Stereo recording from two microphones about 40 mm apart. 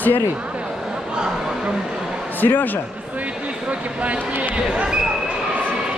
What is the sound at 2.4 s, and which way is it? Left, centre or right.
Speech, left.